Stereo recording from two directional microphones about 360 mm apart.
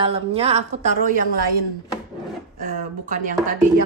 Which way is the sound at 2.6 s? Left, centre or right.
Right.